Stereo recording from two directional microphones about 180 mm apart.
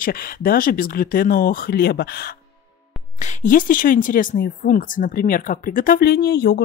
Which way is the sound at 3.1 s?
45° left (ahead or behind).